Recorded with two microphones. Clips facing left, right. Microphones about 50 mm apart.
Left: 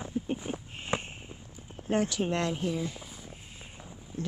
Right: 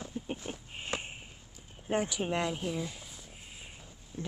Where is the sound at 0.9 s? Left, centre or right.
Left.